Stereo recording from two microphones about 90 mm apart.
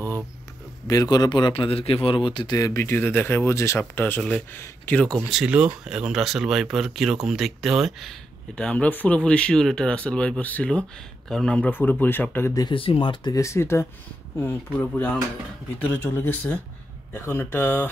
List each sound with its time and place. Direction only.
0.8 s a man's voice: 45° left (ahead or behind); by 2.5 s 65° left (ahead or behind)
2.5 s speech: 35° left (ahead or behind)
3.0 s speech: 20° left (ahead or behind)
5.3 s speech: 10° right (ahead or behind); by 11.7 s 10° left (ahead or behind)
11.7 s speech: 20° left (ahead or behind)
12.7 s speech: 85° left; by 13.3 s 65° left (ahead or behind)
13.3 s speech: 35° left (ahead or behind)